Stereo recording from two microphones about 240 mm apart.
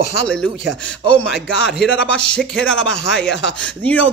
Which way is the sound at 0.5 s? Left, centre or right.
Left.